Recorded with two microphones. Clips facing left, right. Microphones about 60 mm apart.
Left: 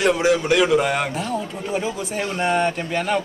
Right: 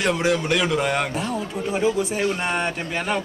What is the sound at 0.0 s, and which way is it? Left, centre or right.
A man's voice, centre.